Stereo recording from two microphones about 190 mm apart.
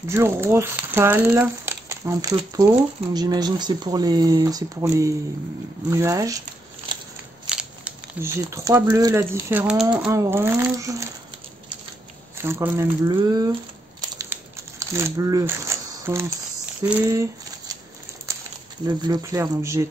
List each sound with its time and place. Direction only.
0.1 s speech: 15° right (ahead or behind)
6.9 s scissors: 25° right (ahead or behind)
7.4 s speech: 5° right (ahead or behind)
12.4 s speech: 15° right (ahead or behind)
14.1 s crumpling: 15° right (ahead or behind)
17.0 s speech: 15° right (ahead or behind)
18.9 s speech: 20° right (ahead or behind)